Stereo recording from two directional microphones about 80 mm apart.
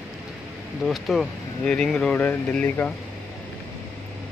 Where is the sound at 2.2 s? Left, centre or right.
Left.